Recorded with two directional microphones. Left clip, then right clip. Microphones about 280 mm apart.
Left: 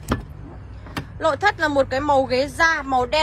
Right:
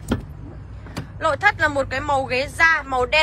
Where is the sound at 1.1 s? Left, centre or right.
Centre.